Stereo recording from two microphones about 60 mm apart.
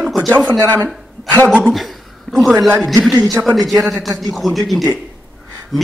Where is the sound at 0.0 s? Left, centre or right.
Centre.